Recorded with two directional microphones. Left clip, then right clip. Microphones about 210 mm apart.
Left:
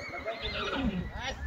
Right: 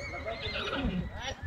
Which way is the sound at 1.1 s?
55° left (ahead or behind).